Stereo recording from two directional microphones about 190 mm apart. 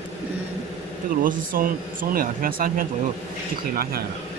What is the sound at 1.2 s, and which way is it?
Speech, 45° right (ahead or behind).